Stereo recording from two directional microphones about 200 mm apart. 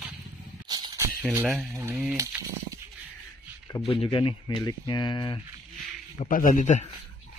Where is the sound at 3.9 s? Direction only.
25° left (ahead or behind).